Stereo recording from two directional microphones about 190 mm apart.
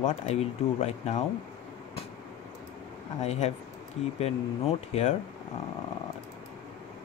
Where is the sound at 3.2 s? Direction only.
35° left (ahead or behind).